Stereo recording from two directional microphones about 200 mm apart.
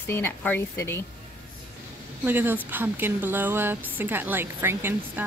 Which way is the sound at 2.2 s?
10° right (ahead or behind).